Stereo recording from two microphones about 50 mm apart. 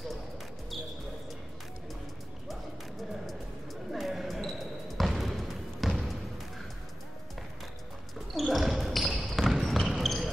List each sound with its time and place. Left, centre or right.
3.0 s music: centre
3.9 s basketball bounce: centre
8.4 s basketball bounce: centre